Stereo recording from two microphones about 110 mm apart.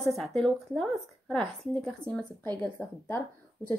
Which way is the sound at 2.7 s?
20° left (ahead or behind).